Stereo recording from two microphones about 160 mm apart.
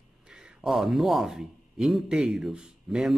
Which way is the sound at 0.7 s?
Centre (ahead or behind).